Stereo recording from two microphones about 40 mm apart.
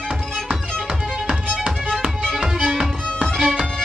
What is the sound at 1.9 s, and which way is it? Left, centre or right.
Music, centre.